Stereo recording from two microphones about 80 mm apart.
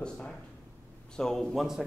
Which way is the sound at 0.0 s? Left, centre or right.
Centre.